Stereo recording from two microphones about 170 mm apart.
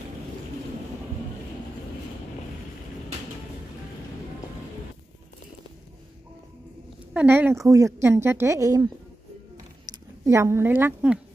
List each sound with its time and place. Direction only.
7.2 s speech: 10° right (ahead or behind)
10.2 s speech: 15° right (ahead or behind)